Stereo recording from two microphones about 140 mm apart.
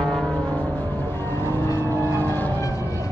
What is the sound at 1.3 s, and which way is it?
Vehicle, 15° left (ahead or behind).